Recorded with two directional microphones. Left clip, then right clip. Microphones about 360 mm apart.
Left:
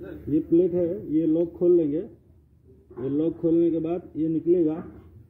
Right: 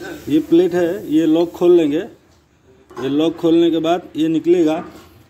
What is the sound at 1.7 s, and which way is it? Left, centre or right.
Speech, centre.